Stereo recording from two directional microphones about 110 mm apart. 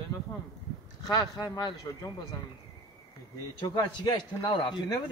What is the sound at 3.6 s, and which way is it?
Speech, 40° left (ahead or behind).